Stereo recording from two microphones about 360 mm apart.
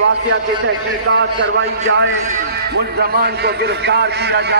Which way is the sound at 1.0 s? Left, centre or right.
Right.